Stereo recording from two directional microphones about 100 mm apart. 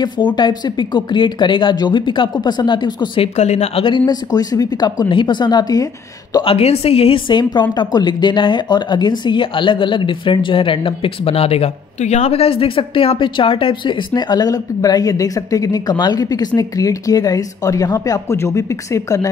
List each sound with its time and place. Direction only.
0.0 s speech: 50° left (ahead or behind)
3.2 s a woman's voice: 75° left (ahead or behind)
4.1 s speech: 40° left (ahead or behind)
6.4 s a woman's voice: 80° left; by 19.2 s 30° left (ahead or behind)